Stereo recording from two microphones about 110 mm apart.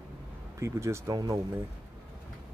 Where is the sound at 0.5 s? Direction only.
25° right (ahead or behind).